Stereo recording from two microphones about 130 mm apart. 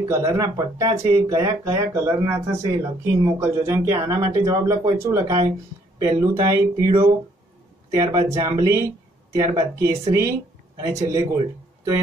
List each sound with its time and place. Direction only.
0.1 s speech: 20° right (ahead or behind)